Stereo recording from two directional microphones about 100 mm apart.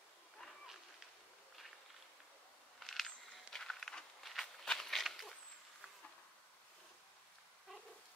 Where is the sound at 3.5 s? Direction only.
5° left (ahead or behind).